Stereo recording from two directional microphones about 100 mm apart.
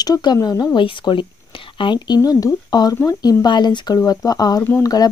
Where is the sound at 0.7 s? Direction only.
55° left (ahead or behind).